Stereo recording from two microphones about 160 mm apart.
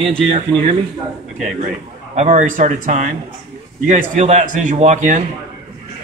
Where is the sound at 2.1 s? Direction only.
50° right (ahead or behind).